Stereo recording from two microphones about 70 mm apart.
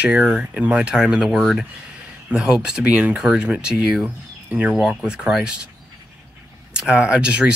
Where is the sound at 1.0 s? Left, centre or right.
Centre.